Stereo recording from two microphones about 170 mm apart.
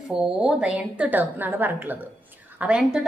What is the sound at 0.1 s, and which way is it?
A woman's voice, 5° right (ahead or behind).